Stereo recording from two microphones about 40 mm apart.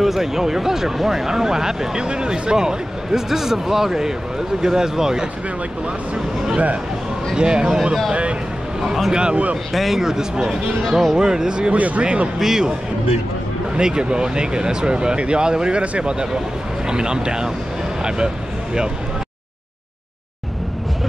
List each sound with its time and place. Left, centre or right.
0.0 s speech: centre; by 9.4 s right
9.7 s speech: centre; by 11.7 s right
11.7 s speech: right
12.4 s speech: centre
13.7 s speech: right